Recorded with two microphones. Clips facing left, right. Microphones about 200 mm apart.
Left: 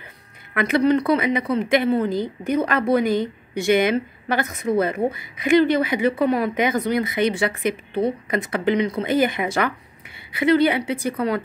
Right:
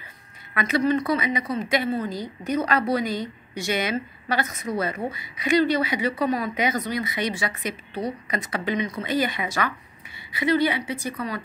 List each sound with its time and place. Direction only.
0.6 s a woman's voice: 55° left (ahead or behind)